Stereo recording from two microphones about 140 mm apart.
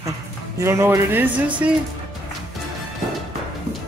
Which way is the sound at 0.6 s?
20° right (ahead or behind).